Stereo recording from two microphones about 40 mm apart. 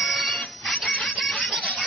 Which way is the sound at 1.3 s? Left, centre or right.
Centre.